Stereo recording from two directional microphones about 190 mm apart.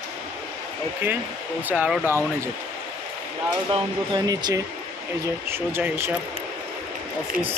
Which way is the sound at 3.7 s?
25° right (ahead or behind).